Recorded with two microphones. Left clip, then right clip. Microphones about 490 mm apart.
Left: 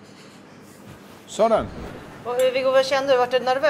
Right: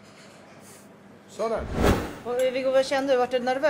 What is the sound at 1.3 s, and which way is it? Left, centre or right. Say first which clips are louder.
Speech: left 9 dB; left.